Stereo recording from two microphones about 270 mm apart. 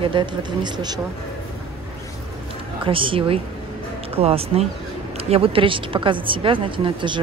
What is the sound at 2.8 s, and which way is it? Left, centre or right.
A woman's voice, centre.